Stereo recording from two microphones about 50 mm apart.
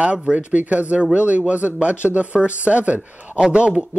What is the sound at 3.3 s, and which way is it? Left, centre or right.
Speech, centre.